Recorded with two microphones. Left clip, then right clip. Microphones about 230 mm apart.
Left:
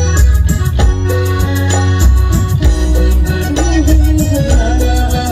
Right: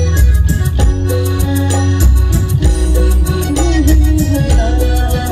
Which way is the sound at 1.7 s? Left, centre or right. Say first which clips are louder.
Left 1 dB; right.